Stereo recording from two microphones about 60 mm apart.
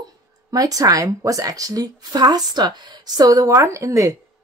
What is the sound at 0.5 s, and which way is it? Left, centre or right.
Speech, right.